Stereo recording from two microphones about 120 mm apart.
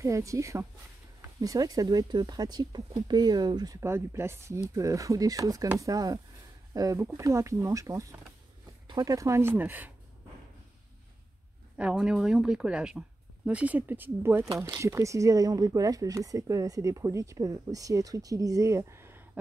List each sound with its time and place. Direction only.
0.0 s speech: 25° right (ahead or behind)
3.8 s speech: 20° right (ahead or behind)
11.9 s speech: 5° right (ahead or behind); by 19.2 s 20° right (ahead or behind)